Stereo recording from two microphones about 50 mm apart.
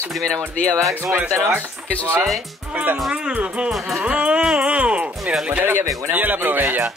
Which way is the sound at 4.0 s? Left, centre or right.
Right.